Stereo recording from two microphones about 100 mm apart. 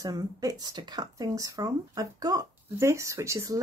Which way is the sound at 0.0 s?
35° right (ahead or behind).